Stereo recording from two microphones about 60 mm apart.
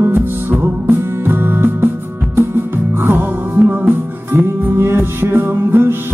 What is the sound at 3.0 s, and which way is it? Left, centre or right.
Music, right.